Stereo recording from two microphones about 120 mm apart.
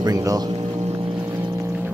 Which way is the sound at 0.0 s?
30° right (ahead or behind).